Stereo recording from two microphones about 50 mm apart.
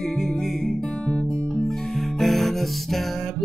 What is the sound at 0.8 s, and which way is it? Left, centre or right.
Guitar, left.